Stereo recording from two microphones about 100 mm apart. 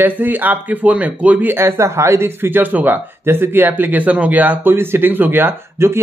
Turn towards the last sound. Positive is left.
turn(degrees=-25)  # may be behind; listen again after turning